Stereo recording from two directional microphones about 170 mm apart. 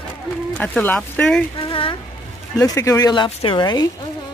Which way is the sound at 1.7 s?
30° left (ahead or behind).